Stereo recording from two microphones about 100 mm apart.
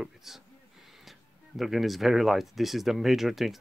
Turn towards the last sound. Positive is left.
turn(degrees=0)  # may be behind; listen again after turning